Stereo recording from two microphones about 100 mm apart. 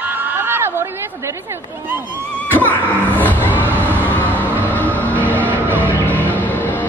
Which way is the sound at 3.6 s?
20° right (ahead or behind).